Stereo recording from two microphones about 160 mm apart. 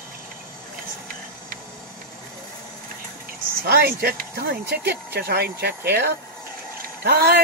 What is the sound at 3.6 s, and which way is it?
Speech, 70° right (ahead or behind).